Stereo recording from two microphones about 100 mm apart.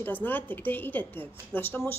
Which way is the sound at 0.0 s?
20° left (ahead or behind).